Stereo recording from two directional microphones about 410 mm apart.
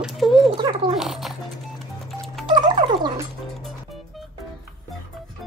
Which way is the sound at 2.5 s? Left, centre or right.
Centre.